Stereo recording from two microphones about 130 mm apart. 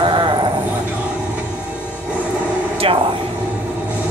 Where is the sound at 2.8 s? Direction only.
45° right (ahead or behind).